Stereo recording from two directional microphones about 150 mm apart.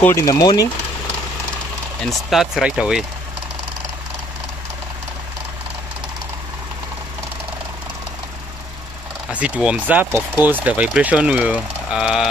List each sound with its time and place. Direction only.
0.0 s speech: 20° left (ahead or behind)
2.0 s speech: centre (ahead or behind)
9.3 s speech: 10° right (ahead or behind)